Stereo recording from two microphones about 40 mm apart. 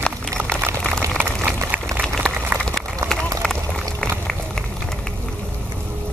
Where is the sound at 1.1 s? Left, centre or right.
Right.